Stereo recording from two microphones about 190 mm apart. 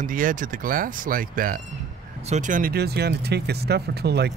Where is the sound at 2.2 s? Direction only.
35° right (ahead or behind).